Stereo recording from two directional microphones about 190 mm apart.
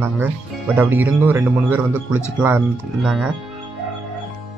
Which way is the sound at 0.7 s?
10° right (ahead or behind).